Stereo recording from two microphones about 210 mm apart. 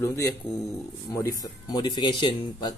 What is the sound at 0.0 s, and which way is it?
A man's voice, 10° left (ahead or behind).